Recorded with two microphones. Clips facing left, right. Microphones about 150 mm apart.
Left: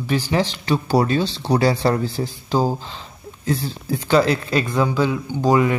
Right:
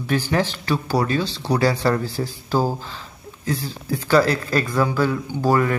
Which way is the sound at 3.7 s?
25° left (ahead or behind).